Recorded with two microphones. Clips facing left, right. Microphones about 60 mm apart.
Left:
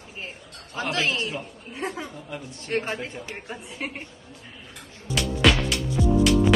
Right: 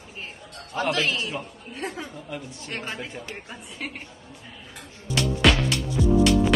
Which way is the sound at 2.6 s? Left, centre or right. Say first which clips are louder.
Left 8 dB; left.